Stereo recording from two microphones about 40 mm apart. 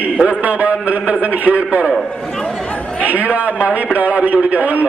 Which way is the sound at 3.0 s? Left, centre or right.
Right.